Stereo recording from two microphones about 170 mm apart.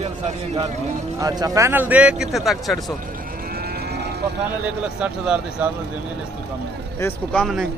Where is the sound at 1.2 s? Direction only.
20° right (ahead or behind); by 2.8 s centre (ahead or behind).